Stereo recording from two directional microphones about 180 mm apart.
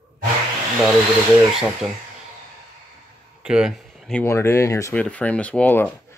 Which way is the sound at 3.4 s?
5° right (ahead or behind).